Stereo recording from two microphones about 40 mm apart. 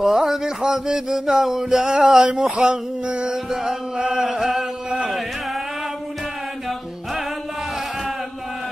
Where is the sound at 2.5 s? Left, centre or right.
Right.